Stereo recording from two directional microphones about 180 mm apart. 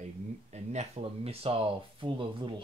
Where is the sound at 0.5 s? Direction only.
40° right (ahead or behind).